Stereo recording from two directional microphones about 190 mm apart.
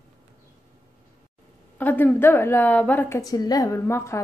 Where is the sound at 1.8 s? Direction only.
10° left (ahead or behind).